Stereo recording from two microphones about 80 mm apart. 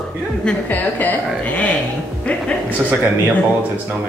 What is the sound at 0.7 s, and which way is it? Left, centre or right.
Speech, left.